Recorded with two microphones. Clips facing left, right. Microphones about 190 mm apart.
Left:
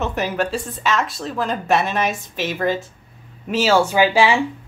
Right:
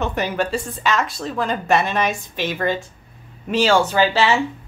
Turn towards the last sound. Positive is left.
turn(degrees=10)  # may be behind; listen again after turning